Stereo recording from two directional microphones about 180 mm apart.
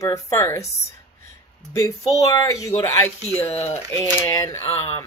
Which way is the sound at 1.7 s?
20° left (ahead or behind).